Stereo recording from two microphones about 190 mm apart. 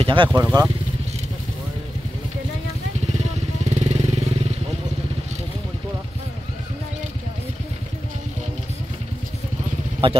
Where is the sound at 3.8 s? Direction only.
35° right (ahead or behind).